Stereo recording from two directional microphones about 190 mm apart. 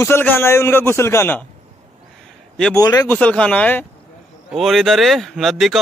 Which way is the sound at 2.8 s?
20° left (ahead or behind).